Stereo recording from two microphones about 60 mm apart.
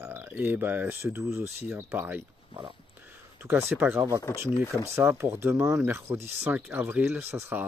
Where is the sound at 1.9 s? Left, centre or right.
Right.